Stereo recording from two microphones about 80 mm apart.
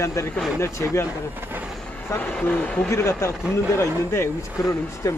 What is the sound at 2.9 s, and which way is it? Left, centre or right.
Speech, left.